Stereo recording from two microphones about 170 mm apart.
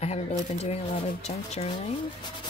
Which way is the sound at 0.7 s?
40° left (ahead or behind).